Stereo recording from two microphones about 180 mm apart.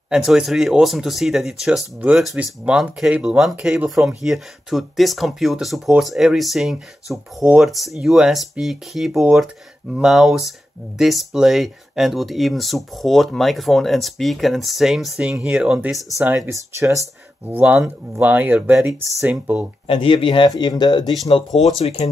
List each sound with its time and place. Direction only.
0.1 s speech: centre (ahead or behind)
16.2 s speech: 15° right (ahead or behind)
19.0 s speech: centre (ahead or behind)
19.9 s speech: 30° left (ahead or behind)